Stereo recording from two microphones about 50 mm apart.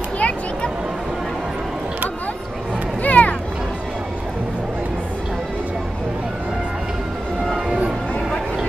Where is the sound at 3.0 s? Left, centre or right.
Left.